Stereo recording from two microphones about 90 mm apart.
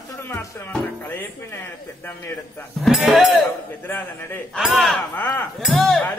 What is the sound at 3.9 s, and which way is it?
Speech, 25° left (ahead or behind).